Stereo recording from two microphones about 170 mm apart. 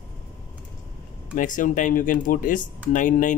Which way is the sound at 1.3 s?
50° left (ahead or behind).